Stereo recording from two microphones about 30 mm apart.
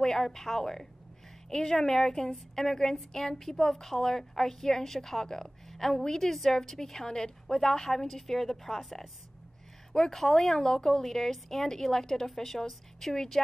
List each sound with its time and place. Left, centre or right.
0.0 s a woman's voice: centre
9.9 s a woman's voice: centre
13.1 s a woman's voice: centre